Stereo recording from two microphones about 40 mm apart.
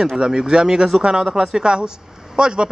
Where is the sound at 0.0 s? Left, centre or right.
Centre.